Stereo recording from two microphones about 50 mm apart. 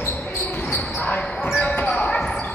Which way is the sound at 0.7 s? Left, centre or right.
Left.